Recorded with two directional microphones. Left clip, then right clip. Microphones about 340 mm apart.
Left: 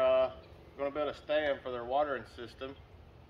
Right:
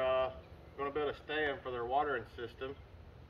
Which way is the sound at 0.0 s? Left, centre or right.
Centre.